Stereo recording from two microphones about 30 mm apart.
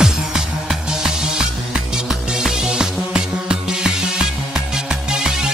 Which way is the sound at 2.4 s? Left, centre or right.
Right.